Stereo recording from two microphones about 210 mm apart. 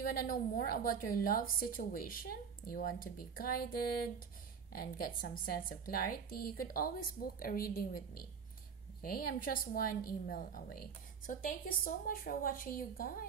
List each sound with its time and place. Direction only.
0.0 s a woman's voice: 45° left (ahead or behind)